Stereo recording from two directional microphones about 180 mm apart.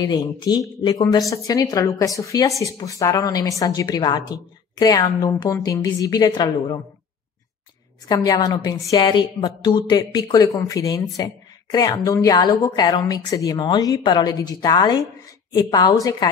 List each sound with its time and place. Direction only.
0.0 s speech: 20° left (ahead or behind)
8.1 s speech: 20° left (ahead or behind)